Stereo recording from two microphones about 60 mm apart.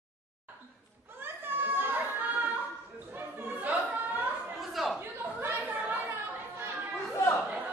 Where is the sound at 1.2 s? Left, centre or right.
Right.